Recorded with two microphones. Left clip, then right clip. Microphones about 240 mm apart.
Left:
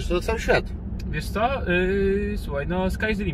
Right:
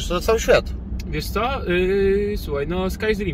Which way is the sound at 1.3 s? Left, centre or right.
Centre.